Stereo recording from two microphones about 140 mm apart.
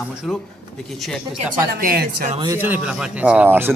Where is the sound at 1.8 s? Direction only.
90° right.